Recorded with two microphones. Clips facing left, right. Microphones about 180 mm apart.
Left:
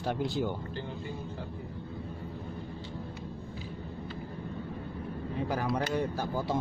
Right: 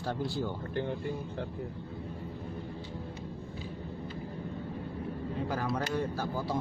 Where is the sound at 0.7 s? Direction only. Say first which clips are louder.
Right 5 dB; 60° right (ahead or behind).